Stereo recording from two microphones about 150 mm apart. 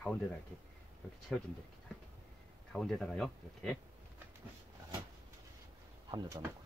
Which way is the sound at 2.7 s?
Centre (ahead or behind).